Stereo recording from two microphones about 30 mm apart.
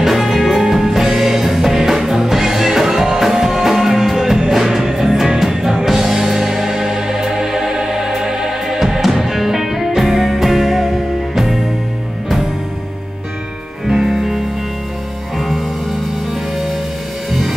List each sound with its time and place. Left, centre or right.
0.0 s music: centre
13.8 s music: centre
15.3 s music: centre
17.3 s music: centre